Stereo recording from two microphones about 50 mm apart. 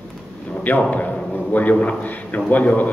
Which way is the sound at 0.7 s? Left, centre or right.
Left.